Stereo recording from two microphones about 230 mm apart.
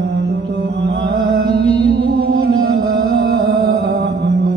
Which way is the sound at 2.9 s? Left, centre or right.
Right.